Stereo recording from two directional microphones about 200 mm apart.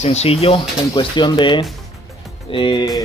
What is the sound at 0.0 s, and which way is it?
Speech, 30° left (ahead or behind).